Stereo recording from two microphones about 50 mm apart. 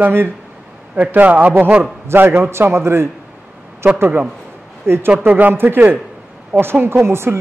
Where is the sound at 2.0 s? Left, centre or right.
Right.